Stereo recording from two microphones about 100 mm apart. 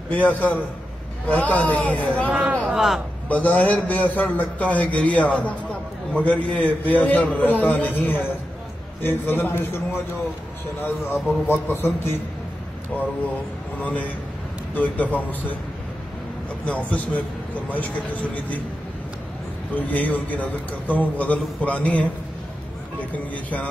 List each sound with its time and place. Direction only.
0.1 s a man's voice: 15° left (ahead or behind)
2.2 s a sound: 10° right (ahead or behind)
3.3 s a man's voice: 15° left (ahead or behind)
11.2 s a man's voice: 20° left (ahead or behind)
13.7 s a man's voice: 15° left (ahead or behind)
16.6 s a man's voice: 15° left (ahead or behind)
19.7 s a man's voice: 15° left (ahead or behind)
23.1 s a man's voice: 15° left (ahead or behind)